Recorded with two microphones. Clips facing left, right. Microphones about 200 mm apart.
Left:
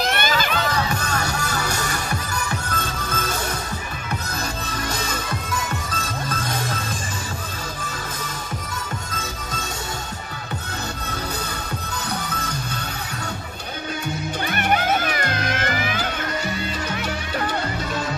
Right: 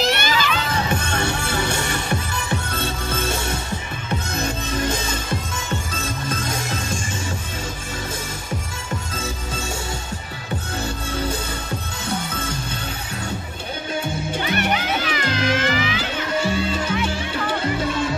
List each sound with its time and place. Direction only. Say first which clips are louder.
0.0 s a sound: right 1 dB; 50° left (ahead or behind)
0.7 s music: right 1 dB; 25° right (ahead or behind)
9.1 s music: right 3 dB; 30° right (ahead or behind)
12.1 s music: right 4 dB; 25° right (ahead or behind)
14.4 s music: left 2 dB; 50° left (ahead or behind)
16.3 s music: right 5 dB; 30° right (ahead or behind)